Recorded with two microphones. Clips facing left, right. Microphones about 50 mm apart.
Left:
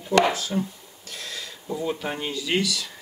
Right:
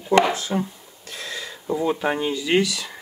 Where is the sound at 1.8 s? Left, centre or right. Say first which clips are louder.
Right 6 dB; centre.